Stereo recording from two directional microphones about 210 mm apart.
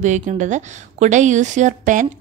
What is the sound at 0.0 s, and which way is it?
A woman's voice, 35° right (ahead or behind).